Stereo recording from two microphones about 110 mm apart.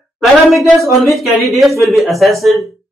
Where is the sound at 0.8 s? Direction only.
Centre (ahead or behind).